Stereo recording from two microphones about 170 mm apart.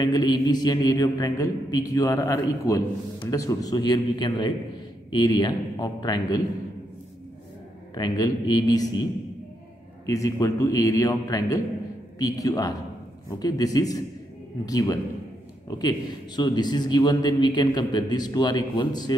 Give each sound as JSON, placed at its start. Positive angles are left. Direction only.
{"t": 0.0, "sound": "a man's voice", "side_deg": 25}
{"t": 7.9, "sound": "a man's voice", "side_deg": 25}
{"t": 10.0, "sound": "a man's voice", "side_deg": 20}